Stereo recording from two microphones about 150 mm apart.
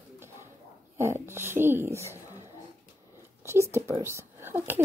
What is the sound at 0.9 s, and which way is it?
Speech, 15° right (ahead or behind).